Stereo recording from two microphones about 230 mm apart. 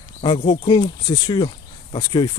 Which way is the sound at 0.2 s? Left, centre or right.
Centre.